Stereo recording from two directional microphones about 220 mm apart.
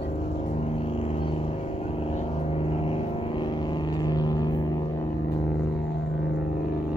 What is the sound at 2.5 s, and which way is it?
Vehicle, 25° left (ahead or behind).